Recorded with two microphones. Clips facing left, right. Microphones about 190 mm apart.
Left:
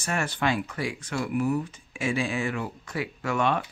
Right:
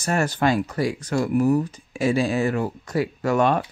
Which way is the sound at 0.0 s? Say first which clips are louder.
Right 6 dB; 40° right (ahead or behind).